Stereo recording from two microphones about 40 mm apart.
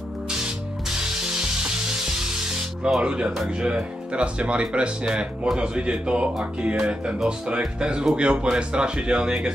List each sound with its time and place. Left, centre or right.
0.8 s spray: centre
3.0 s speech: right